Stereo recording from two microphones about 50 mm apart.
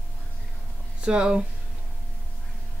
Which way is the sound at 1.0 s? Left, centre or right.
Centre.